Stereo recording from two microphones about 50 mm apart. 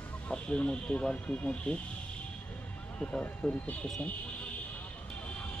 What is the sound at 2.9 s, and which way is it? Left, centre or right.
Speech, left.